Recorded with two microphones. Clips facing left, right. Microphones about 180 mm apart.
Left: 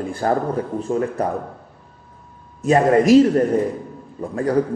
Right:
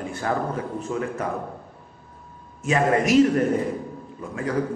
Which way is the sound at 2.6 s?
35° left (ahead or behind).